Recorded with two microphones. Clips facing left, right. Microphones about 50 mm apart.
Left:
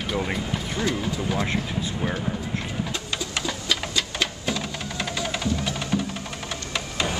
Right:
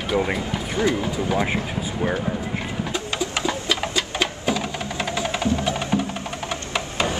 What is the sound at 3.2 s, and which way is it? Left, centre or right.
Music, centre.